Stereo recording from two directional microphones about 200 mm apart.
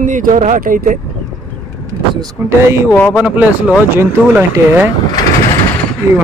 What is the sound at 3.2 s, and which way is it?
Speech, 5° right (ahead or behind).